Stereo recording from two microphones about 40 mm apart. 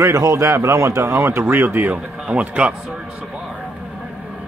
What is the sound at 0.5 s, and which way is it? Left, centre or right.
Speech, right.